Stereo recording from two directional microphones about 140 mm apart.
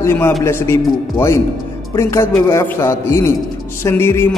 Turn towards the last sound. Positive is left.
turn(degrees=15)  # may be behind; listen again after turning